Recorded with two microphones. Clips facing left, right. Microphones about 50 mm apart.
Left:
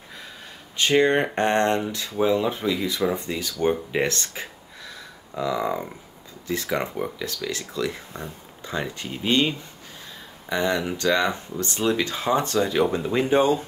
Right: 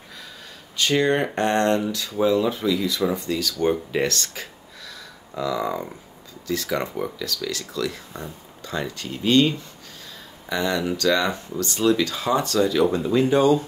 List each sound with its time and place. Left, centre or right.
0.7 s speech: left
6.4 s speech: left
10.5 s speech: centre